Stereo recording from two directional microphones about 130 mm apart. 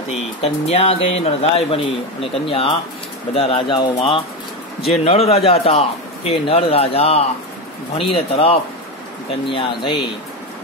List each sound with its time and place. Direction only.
0.4 s speech: 55° left (ahead or behind)
4.8 s speech: 50° left (ahead or behind)